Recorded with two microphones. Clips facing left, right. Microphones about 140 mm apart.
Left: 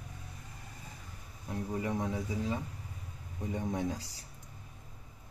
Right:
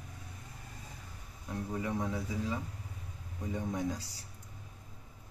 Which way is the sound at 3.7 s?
25° left (ahead or behind).